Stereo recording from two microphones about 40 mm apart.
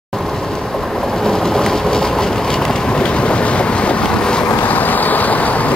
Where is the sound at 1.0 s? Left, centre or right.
Centre.